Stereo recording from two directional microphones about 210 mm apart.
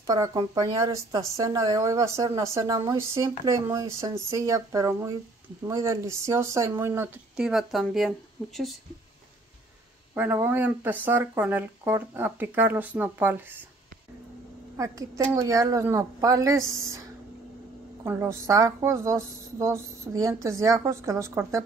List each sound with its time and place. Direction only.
0.0 s speech: 15° right (ahead or behind); by 8.1 s centre (ahead or behind)
10.1 s speech: 10° right (ahead or behind)
14.8 s speech: 15° right (ahead or behind)
18.0 s speech: 10° right (ahead or behind)